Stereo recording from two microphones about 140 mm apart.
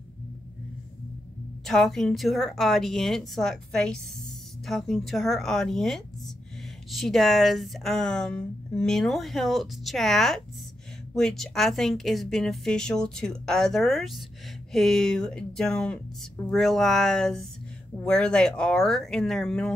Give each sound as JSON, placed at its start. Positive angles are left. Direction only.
{"t": 1.7, "sound": "speech", "side_deg": 0}